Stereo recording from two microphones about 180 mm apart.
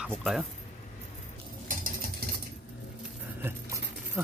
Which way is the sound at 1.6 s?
50° right (ahead or behind).